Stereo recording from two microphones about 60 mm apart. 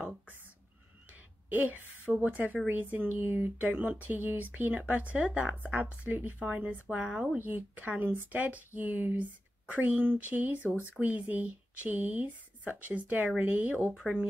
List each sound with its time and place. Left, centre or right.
1.5 s a woman's voice: right
7.3 s speech: right